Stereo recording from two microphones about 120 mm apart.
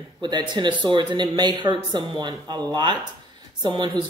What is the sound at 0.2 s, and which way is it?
Speech, 40° right (ahead or behind).